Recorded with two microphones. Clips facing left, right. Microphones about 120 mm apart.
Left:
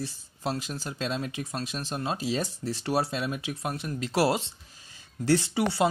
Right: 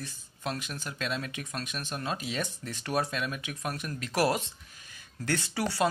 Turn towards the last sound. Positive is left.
turn(degrees=25)  # may be behind; listen again after turning